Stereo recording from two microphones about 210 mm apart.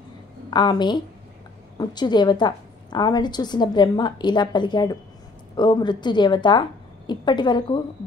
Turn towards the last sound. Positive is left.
turn(degrees=20)  # may be behind; listen again after turning